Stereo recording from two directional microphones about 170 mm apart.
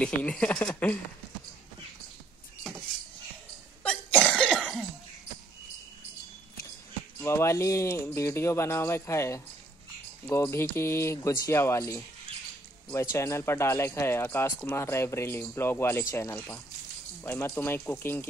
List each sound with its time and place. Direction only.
0.0 s speech: 5° left (ahead or behind)
3.8 s cough: 5° left (ahead or behind)
7.2 s speech: 15° left (ahead or behind)